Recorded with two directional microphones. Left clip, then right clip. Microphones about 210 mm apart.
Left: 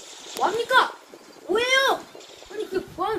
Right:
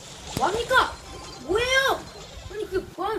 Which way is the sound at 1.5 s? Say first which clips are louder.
Left 1 dB; centre (ahead or behind).